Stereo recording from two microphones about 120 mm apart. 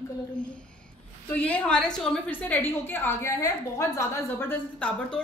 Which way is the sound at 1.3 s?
15° left (ahead or behind).